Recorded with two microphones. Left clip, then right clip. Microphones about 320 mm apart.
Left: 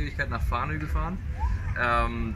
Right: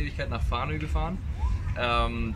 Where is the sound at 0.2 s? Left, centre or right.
Centre.